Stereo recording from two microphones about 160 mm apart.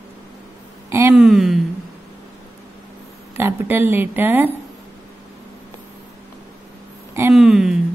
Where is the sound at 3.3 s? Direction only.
15° right (ahead or behind).